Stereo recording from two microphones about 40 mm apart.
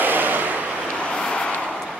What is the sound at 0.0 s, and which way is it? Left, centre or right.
Vehicle, right.